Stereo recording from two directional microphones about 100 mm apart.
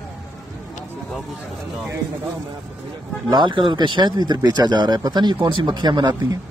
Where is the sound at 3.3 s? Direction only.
50° right (ahead or behind).